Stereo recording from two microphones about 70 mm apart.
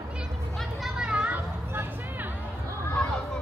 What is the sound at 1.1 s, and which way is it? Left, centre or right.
Children playing, centre.